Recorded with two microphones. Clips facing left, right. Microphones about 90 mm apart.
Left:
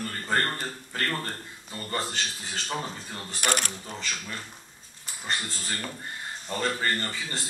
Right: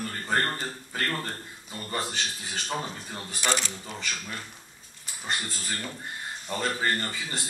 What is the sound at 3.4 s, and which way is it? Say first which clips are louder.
Speech: even; 55° left (ahead or behind).